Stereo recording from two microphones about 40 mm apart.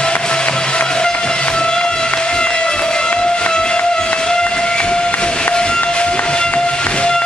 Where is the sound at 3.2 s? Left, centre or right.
Left.